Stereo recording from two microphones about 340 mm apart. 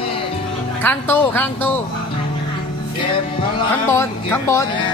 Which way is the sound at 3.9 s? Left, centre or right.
Centre.